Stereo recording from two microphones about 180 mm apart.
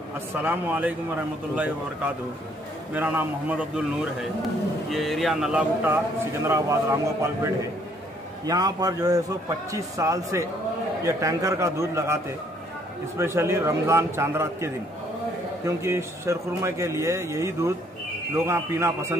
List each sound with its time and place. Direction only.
0.4 s a man's voice: 10° right (ahead or behind)
2.9 s a man's voice: 10° right (ahead or behind)
13.2 s a man's voice: 15° right (ahead or behind)